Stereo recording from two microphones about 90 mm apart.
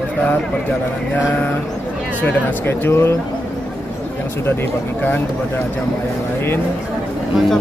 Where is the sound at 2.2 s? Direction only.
25° left (ahead or behind).